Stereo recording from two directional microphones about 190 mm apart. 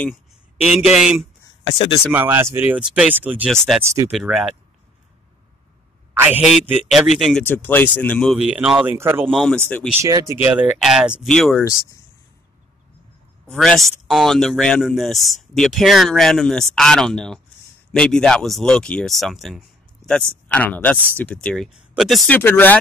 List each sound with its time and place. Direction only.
0.7 s speech: 5° right (ahead or behind)
1.6 s speech: 25° left (ahead or behind)
2.0 s speech: 10° right (ahead or behind)
3.4 s speech: centre (ahead or behind)
3.8 s speech: 15° right (ahead or behind)
4.1 s speech: 5° right (ahead or behind)
6.1 s speech: 10° right (ahead or behind)
9.3 s speech: centre (ahead or behind)
10.0 s speech: 15° right (ahead or behind)
10.4 s speech: 5° right (ahead or behind)
13.5 s speech: centre (ahead or behind)